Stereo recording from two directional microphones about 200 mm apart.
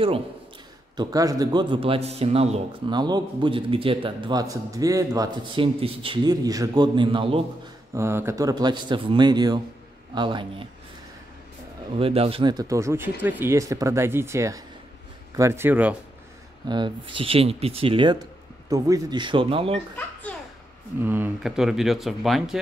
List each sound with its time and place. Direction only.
0.9 s a man's voice: 20° right (ahead or behind)
7.9 s a man's voice: 15° right (ahead or behind)
12.0 s speech: 30° right (ahead or behind); by 16.0 s 5° right (ahead or behind)
16.6 s a man's voice: 20° right (ahead or behind)
21.0 s speech: 10° right (ahead or behind)